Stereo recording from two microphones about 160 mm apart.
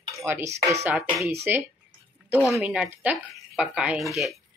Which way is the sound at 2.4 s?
Centre (ahead or behind).